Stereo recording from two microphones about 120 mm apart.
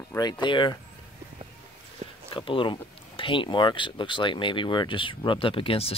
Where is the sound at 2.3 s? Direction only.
45° left (ahead or behind).